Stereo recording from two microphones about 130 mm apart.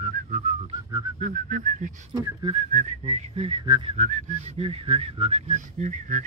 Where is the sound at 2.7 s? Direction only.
65° right (ahead or behind).